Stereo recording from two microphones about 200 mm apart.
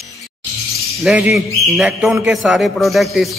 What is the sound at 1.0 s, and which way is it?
A man's voice, 5° right (ahead or behind).